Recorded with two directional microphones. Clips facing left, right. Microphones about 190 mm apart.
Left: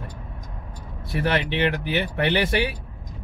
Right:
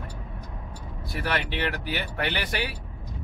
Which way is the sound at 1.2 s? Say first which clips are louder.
Left 6 dB; 20° left (ahead or behind).